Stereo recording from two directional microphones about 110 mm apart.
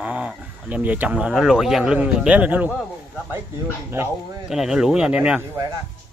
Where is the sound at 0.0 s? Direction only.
10° right (ahead or behind).